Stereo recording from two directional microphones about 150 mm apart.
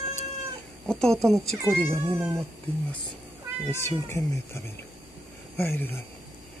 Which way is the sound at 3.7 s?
15° left (ahead or behind).